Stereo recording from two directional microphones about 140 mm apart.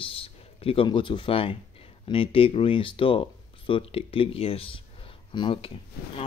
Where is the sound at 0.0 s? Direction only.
40° left (ahead or behind).